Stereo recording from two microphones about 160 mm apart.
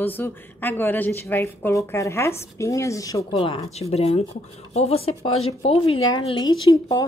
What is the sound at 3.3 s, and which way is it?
Speech, 35° left (ahead or behind).